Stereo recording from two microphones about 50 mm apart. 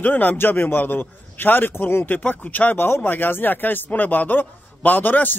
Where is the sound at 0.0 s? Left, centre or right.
Left.